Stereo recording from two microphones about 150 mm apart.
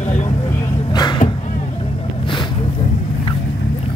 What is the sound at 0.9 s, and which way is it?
Music, 30° left (ahead or behind).